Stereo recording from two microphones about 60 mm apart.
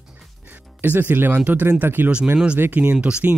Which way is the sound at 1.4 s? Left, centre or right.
Right.